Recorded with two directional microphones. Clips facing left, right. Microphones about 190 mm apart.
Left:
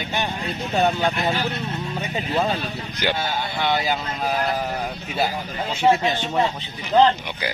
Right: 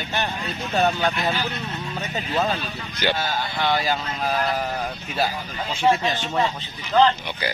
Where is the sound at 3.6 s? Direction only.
20° left (ahead or behind).